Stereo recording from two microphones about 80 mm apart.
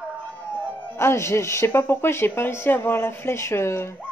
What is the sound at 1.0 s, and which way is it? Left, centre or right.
Speech, left.